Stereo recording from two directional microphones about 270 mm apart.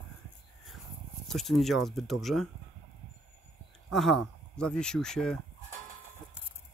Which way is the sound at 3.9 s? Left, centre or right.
Centre.